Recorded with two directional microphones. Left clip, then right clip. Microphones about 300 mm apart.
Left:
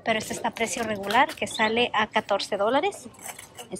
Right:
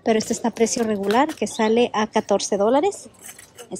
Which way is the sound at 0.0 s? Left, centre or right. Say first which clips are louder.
Right 5 dB; right.